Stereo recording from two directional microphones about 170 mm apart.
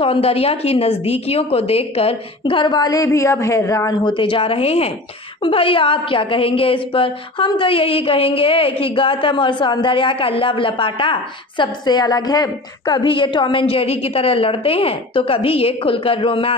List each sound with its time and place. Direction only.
0.0 s a woman's voice: 35° left (ahead or behind)